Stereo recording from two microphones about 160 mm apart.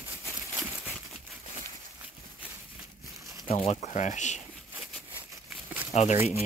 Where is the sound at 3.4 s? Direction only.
40° left (ahead or behind).